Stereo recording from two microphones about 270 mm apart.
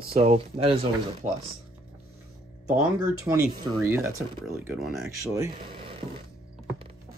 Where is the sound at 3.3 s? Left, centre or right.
Centre.